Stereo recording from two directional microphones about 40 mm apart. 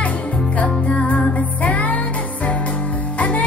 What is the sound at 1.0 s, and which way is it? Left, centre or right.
Music, left.